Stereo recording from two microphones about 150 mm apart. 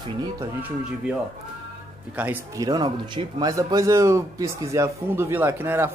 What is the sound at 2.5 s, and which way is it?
Speech, 25° right (ahead or behind).